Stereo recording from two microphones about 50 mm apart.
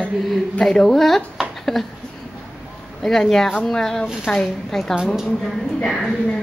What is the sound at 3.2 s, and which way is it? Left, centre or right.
A woman's voice, centre.